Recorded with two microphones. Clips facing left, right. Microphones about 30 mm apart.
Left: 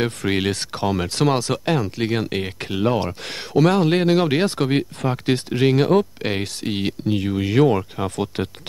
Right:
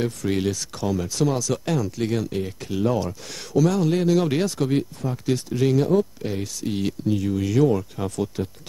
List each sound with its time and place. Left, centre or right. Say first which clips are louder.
0.0 s speech: left 2 dB; left
2.2 s speech: left 3 dB; left